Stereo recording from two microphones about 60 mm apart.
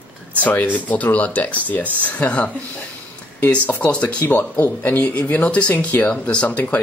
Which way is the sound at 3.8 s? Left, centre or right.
Centre.